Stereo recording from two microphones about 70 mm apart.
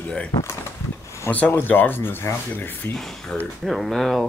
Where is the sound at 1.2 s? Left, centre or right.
Left.